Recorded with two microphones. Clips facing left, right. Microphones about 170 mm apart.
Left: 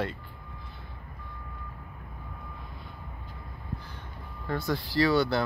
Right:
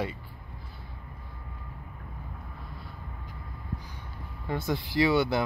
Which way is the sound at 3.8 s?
15° right (ahead or behind).